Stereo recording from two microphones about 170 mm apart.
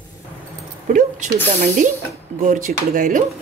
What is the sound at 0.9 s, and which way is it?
Speech, 50° right (ahead or behind).